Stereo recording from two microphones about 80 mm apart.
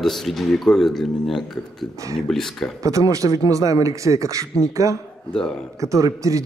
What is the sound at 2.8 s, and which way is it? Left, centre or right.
Speech, right.